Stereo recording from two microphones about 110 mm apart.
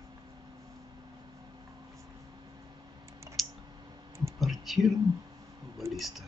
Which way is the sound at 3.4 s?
Centre (ahead or behind).